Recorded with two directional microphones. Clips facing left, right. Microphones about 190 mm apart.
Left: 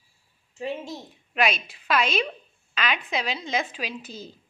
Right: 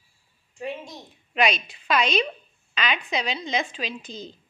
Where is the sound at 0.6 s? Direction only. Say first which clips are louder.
Left 2 dB; 25° left (ahead or behind).